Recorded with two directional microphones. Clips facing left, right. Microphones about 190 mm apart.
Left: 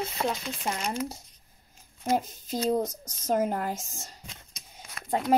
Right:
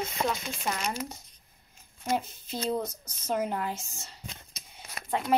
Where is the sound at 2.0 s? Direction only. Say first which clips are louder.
Left 3 dB; 45° left (ahead or behind).